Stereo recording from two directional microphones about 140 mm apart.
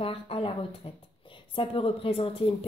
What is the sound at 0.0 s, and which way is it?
Speech, 40° left (ahead or behind).